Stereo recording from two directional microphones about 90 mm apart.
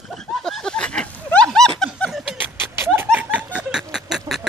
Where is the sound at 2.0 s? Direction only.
15° left (ahead or behind).